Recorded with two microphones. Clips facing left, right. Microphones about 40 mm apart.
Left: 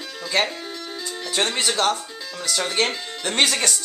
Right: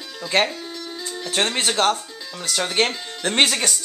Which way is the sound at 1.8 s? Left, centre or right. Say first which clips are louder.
Right 2 dB; right.